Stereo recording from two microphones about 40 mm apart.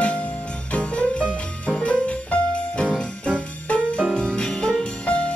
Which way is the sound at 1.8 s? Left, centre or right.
Left.